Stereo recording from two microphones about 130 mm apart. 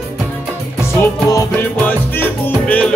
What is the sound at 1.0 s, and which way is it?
Music, 25° left (ahead or behind).